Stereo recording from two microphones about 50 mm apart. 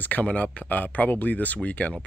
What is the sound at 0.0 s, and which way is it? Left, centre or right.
Speech, left.